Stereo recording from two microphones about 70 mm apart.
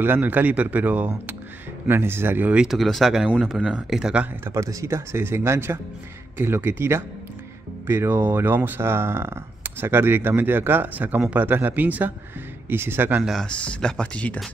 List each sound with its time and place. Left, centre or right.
0.0 s speech: right
2.7 s speech: centre
4.5 s speech: right
13.4 s speech: centre